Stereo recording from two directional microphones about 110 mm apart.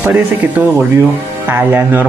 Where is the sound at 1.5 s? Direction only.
20° right (ahead or behind).